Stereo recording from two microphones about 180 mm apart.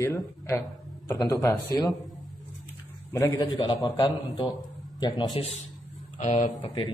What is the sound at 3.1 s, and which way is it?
Speech, 15° left (ahead or behind).